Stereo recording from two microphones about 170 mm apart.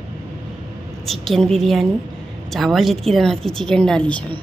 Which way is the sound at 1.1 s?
Centre (ahead or behind).